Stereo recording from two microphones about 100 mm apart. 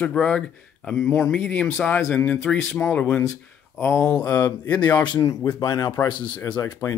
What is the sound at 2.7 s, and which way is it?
Speech, 10° left (ahead or behind).